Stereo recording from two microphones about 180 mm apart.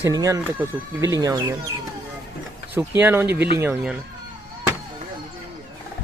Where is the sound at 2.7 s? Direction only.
10° right (ahead or behind).